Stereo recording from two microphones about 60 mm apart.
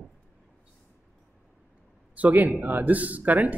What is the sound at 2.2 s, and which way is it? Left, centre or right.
Speech, right.